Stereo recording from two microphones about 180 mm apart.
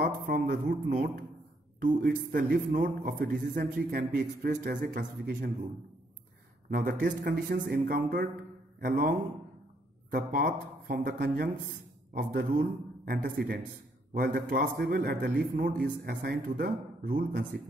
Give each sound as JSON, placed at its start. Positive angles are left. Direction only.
{"t": 0.0, "sound": "a man's voice", "side_deg": -55}
{"t": 6.7, "sound": "speech", "side_deg": -50}
{"t": 10.1, "sound": "a man's voice", "side_deg": -50}